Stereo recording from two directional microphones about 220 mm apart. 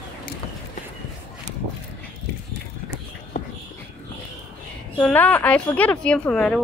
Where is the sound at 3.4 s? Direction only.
35° left (ahead or behind).